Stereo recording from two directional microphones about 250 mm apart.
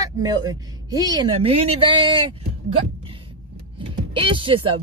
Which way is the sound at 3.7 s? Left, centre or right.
Centre.